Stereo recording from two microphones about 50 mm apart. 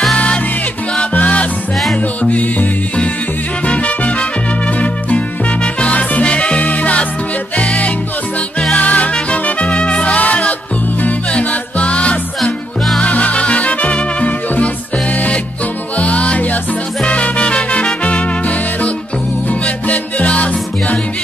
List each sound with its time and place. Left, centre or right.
1.1 s music: left
3.6 s music: left
5.8 s music: left
16.0 s music: left
19.6 s music: left